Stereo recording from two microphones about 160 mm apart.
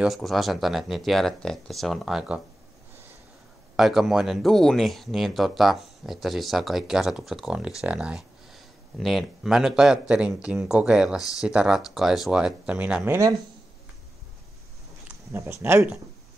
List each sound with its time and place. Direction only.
0.0 s speech: centre (ahead or behind)
3.7 s speech: centre (ahead or behind); by 13.4 s 15° right (ahead or behind)
15.3 s speech: 15° right (ahead or behind)